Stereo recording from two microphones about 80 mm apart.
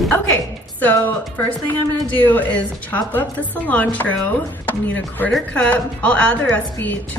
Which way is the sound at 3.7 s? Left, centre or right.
Centre.